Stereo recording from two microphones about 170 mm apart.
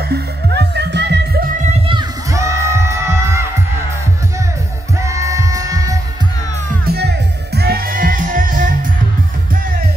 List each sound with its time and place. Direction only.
0.1 s music: 75° right (ahead or behind)
1.9 s music: 20° right (ahead or behind)
5.0 s music: 20° right (ahead or behind)
6.9 s music: 70° right (ahead or behind); by 8.7 s 55° right (ahead or behind)